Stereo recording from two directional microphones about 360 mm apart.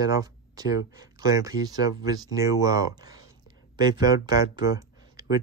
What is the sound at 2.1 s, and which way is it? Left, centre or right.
Speech, centre.